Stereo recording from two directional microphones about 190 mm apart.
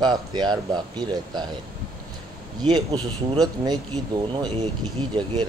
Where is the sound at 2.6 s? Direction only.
20° right (ahead or behind).